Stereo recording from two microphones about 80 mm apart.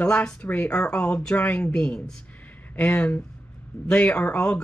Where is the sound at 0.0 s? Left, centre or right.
Centre.